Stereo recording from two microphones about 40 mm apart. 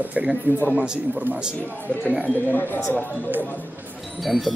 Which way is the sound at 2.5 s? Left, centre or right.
Left.